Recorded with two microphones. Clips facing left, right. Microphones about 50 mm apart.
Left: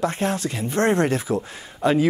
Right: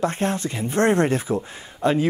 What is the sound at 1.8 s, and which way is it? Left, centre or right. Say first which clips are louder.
Speech: left 1 dB; centre.